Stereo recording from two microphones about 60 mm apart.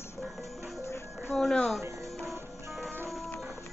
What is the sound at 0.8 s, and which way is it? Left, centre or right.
Music, left.